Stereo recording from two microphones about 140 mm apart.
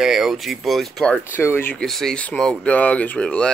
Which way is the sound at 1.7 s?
Centre (ahead or behind).